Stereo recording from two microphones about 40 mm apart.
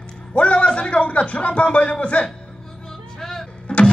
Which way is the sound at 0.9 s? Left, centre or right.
Left.